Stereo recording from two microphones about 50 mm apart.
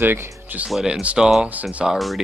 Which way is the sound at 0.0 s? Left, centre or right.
Right.